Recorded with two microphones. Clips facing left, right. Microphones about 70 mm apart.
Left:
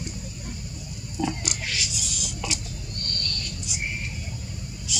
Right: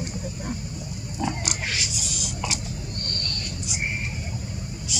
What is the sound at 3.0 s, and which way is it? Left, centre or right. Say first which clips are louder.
Vehicle: right 1 dB; centre.